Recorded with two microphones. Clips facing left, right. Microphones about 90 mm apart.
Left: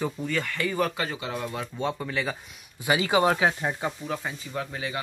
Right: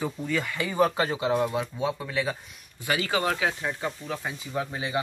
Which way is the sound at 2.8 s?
20° left (ahead or behind).